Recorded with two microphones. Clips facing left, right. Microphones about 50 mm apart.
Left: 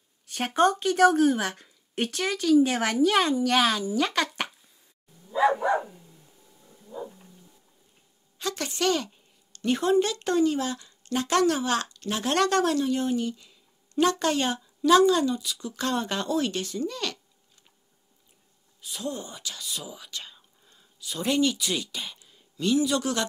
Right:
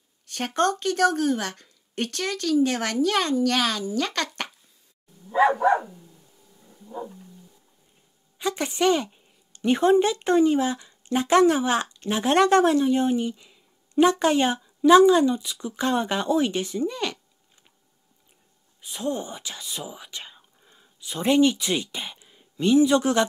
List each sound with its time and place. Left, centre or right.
0.3 s a woman's voice: centre
8.4 s a woman's voice: centre
18.8 s speech: right